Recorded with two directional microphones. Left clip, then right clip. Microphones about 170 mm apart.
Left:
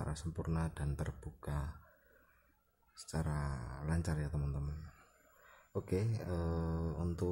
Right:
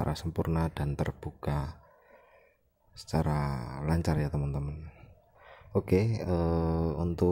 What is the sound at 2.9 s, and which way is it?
Speech, 30° right (ahead or behind).